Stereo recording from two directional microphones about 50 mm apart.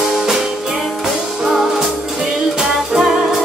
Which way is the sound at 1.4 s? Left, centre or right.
Centre.